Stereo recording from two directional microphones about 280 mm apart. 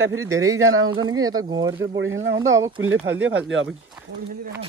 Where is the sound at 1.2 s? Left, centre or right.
Centre.